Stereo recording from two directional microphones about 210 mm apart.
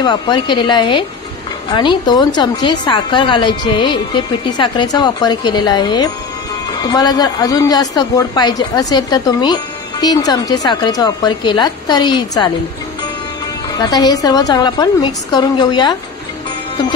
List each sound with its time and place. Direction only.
0.0 s speech: 20° left (ahead or behind)
13.7 s a woman's voice: 20° left (ahead or behind)